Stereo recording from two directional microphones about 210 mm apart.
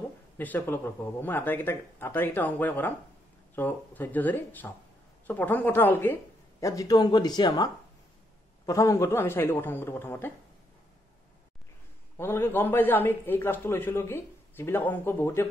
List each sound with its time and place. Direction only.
0.4 s a man's voice: 10° left (ahead or behind)
12.2 s a man's voice: 10° left (ahead or behind)